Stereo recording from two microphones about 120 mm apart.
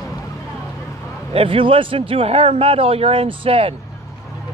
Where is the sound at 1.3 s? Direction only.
45° right (ahead or behind).